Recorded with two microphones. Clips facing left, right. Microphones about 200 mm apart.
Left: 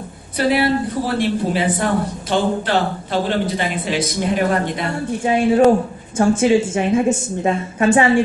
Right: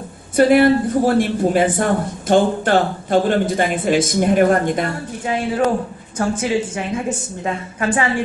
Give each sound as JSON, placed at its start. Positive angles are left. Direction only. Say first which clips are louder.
{"t": 0.4, "sound": "a man's voice", "louder": "right 5 dB", "side_deg": -50}
{"t": 6.1, "sound": "a woman's voice", "louder": "left 5 dB", "side_deg": 25}